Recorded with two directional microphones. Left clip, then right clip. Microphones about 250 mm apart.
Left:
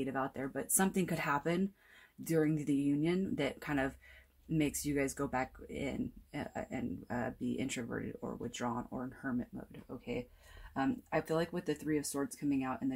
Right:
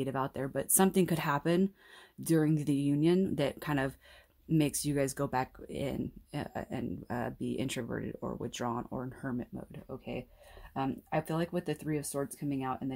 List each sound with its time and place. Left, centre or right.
0.0 s speech: right